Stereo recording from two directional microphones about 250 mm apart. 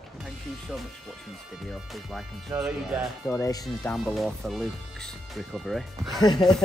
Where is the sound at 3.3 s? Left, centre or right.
Centre.